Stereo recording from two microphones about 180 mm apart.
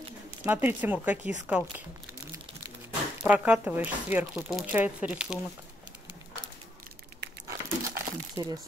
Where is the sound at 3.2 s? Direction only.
5° right (ahead or behind).